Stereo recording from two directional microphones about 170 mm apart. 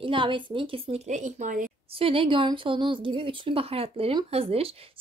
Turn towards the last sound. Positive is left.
turn(degrees=-35)  # may be behind; listen again after turning